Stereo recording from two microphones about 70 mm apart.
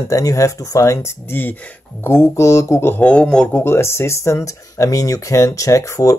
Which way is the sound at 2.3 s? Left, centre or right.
Left.